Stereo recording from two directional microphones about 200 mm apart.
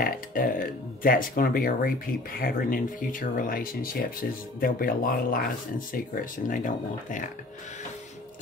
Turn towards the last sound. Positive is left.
turn(degrees=40)  # may be behind; listen again after turning